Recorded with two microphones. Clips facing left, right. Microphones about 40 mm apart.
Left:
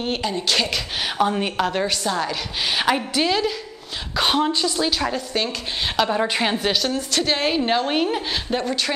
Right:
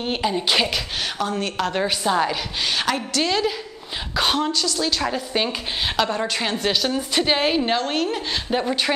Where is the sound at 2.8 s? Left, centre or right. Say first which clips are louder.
Left 4 dB; centre.